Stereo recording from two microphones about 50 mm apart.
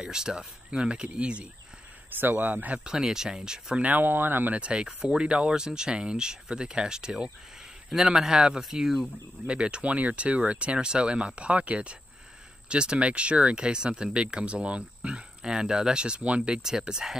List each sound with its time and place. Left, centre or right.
0.0 s speech: centre
2.1 s speech: right
2.8 s speech: centre
3.8 s speech: right
4.6 s speech: right
9.5 s speech: right